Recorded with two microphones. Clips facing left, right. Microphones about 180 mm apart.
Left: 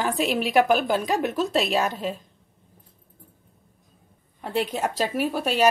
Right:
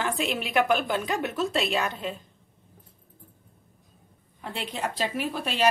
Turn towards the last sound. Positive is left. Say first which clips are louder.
# left 5 dB
turn(degrees=45)  # may be behind; listen again after turning